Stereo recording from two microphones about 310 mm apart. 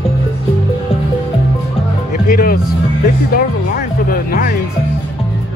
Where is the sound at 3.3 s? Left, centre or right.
Left.